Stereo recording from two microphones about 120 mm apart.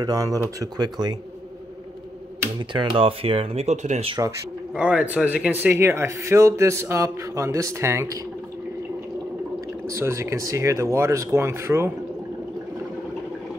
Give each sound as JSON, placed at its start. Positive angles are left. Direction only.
{"t": 0.0, "sound": "speech", "side_deg": -30}
{"t": 2.7, "sound": "speech", "side_deg": -45}
{"t": 4.7, "sound": "speech", "side_deg": -10}
{"t": 9.8, "sound": "speech", "side_deg": -25}